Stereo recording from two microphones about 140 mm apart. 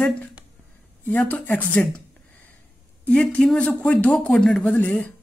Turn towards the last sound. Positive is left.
turn(degrees=15)  # may be behind; listen again after turning